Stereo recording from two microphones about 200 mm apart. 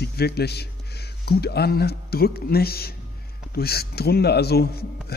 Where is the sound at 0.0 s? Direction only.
50° left (ahead or behind).